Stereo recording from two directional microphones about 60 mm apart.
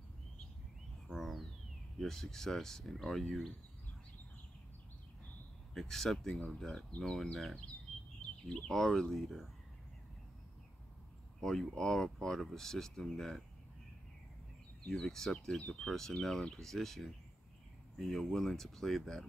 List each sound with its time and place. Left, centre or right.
1.1 s a sound: centre
2.0 s speech: centre
5.8 s speech: centre
8.5 s speech: centre
11.4 s speech: centre
15.0 s speech: centre